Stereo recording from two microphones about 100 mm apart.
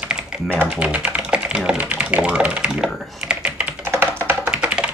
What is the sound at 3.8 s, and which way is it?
Computer keyboard, 20° right (ahead or behind).